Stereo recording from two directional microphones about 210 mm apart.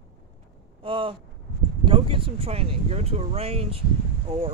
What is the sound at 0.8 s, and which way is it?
Speech, 25° right (ahead or behind).